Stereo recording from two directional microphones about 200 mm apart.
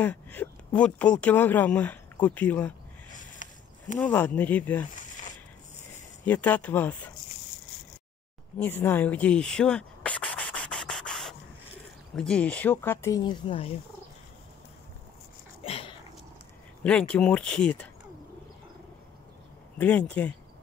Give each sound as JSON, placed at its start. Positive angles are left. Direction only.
{"t": 0.0, "sound": "speech", "side_deg": 10}
{"t": 4.0, "sound": "speech", "side_deg": 10}
{"t": 6.2, "sound": "speech", "side_deg": 10}
{"t": 8.5, "sound": "a sound", "side_deg": 10}
{"t": 12.2, "sound": "speech", "side_deg": 5}
{"t": 15.6, "sound": "a sound", "side_deg": 30}
{"t": 16.8, "sound": "speech", "side_deg": 5}
{"t": 19.8, "sound": "speech", "side_deg": 5}